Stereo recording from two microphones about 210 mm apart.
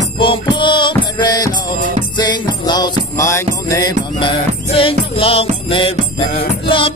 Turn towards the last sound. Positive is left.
turn(degrees=25)  # may be behind; listen again after turning